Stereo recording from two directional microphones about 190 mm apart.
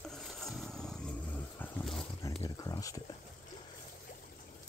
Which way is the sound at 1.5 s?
Centre (ahead or behind).